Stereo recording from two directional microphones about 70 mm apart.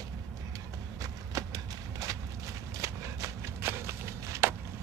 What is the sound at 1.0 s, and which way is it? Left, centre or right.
Clip-clop, right.